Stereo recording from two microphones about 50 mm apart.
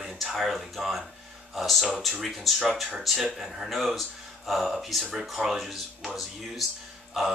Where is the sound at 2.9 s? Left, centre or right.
Centre.